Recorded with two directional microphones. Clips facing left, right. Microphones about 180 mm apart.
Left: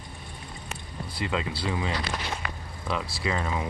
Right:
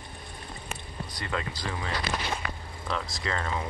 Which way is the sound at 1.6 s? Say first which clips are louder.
Left 5 dB; 15° left (ahead or behind).